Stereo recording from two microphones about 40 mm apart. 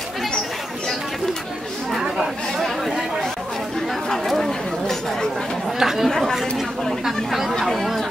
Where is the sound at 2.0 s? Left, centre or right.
Centre.